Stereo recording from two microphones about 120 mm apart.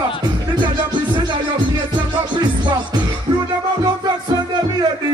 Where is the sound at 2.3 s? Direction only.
40° right (ahead or behind).